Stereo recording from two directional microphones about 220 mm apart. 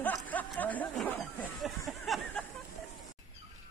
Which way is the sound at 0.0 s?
5° left (ahead or behind).